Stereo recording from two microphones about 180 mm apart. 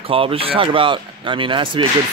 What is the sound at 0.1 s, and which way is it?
Speech, 30° right (ahead or behind).